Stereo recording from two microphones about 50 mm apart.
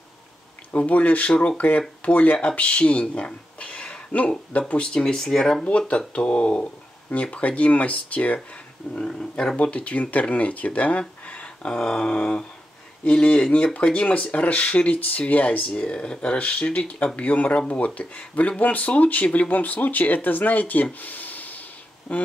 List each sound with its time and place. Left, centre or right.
0.7 s speech: left
8.9 s speech: centre
9.6 s speech: left
22.1 s speech: centre